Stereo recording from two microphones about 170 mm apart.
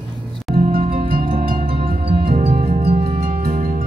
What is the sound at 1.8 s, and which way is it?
Music, 65° right (ahead or behind).